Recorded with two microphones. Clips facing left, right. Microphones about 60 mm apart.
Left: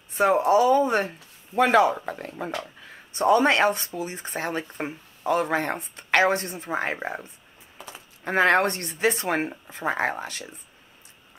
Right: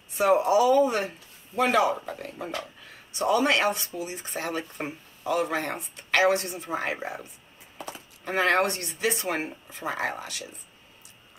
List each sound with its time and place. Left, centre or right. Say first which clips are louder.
0.2 s speech: left 2 dB; left
8.2 s speech: left 3 dB; left